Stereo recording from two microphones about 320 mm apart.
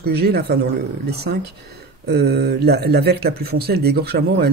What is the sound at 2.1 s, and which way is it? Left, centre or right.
Speech, right.